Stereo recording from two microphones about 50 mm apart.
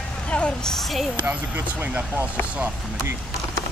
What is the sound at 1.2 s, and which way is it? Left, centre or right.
Speech, right.